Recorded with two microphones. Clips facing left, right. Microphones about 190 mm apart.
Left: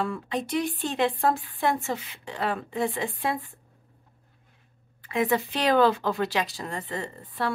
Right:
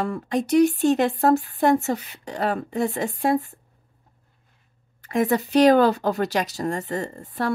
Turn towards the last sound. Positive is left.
turn(degrees=-45)  # may be behind; listen again after turning